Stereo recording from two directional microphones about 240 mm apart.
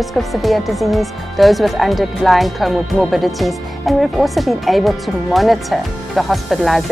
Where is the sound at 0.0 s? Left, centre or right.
Centre.